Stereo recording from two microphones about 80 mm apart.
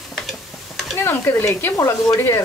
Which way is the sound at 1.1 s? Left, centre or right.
Left.